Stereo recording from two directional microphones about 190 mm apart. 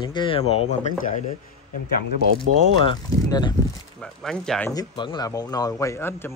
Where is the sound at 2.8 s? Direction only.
20° left (ahead or behind).